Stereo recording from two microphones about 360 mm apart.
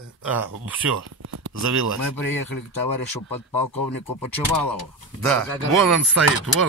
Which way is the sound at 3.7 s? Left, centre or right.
Left.